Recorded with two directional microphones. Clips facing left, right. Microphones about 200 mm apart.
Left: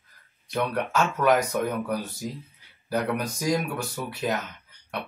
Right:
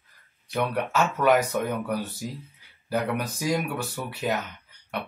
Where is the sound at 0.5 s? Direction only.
Centre (ahead or behind).